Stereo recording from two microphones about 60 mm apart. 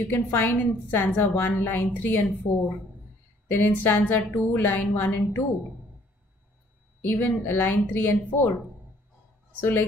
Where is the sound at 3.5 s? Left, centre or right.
Left.